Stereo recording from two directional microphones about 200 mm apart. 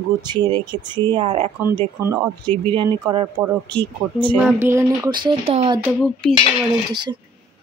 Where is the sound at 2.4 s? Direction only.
10° left (ahead or behind).